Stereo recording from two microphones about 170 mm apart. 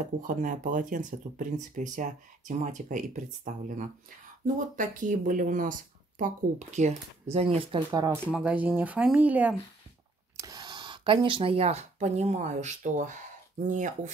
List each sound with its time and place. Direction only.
0.4 s speech: 50° right (ahead or behind)
7.2 s speech: 35° right (ahead or behind)
8.0 s speech: 15° right (ahead or behind)
10.3 s speech: 20° right (ahead or behind); by 14.1 s 45° right (ahead or behind)